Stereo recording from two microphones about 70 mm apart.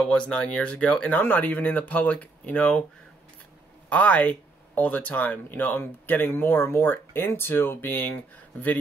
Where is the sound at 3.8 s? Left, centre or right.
Left.